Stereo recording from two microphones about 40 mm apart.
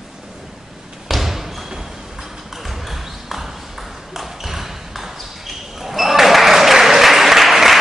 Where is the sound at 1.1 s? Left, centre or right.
Centre.